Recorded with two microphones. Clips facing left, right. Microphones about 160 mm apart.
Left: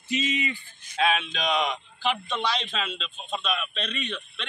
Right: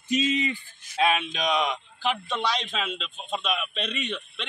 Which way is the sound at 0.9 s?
5° right (ahead or behind).